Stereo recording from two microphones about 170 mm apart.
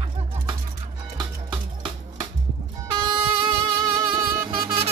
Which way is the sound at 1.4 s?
30° right (ahead or behind).